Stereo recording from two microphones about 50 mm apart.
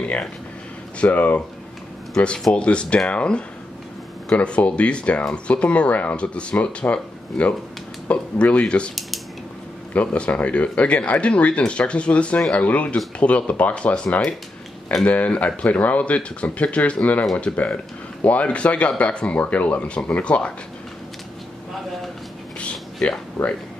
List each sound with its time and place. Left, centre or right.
0.9 s speech: left
2.1 s speech: centre
9.9 s speech: left
22.6 s a sound: left